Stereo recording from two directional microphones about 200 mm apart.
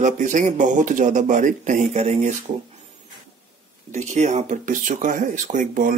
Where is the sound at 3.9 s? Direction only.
35° right (ahead or behind).